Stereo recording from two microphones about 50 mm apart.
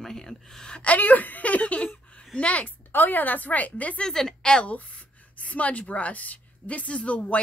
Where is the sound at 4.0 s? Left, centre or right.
Centre.